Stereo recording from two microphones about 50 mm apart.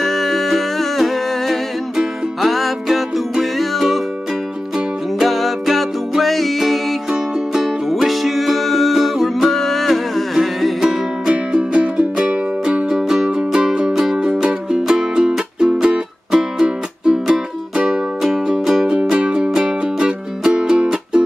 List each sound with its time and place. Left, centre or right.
0.0 s humming: centre
2.0 s music: centre
5.2 s music: centre
7.1 s music: centre
7.9 s music: centre
11.2 s music: centre